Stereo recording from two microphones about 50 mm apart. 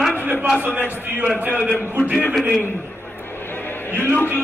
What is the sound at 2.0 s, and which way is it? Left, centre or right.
Speech, right.